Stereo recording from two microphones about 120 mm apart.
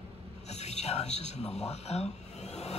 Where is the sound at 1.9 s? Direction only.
60° left (ahead or behind).